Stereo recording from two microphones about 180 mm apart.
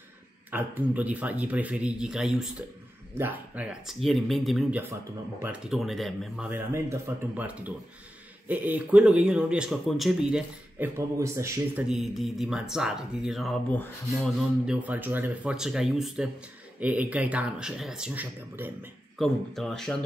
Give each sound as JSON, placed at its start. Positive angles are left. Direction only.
{"t": 0.5, "sound": "speech", "side_deg": -10}
{"t": 11.0, "sound": "speech", "side_deg": -15}
{"t": 11.9, "sound": "speech", "side_deg": 0}
{"t": 14.7, "sound": "speech", "side_deg": -10}
{"t": 19.1, "sound": "speech", "side_deg": 0}